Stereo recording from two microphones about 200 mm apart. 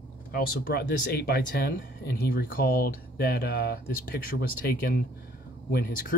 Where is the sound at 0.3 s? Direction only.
50° left (ahead or behind).